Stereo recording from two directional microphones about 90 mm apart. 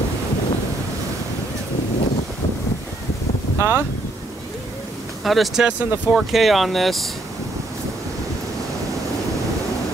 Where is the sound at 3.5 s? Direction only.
30° right (ahead or behind).